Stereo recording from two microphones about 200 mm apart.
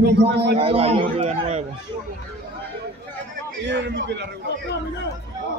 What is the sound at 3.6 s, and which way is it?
Speech, 60° right (ahead or behind).